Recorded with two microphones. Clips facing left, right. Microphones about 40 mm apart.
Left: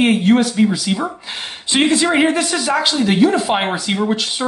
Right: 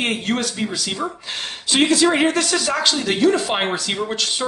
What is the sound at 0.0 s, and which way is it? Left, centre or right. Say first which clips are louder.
Speech: left 8 dB; centre.